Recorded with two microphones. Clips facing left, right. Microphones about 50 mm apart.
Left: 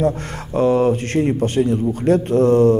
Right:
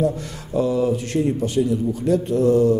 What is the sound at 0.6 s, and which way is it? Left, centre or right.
A man's voice, left.